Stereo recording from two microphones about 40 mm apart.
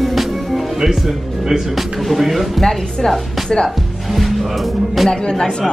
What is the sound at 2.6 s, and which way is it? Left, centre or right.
Speech, centre.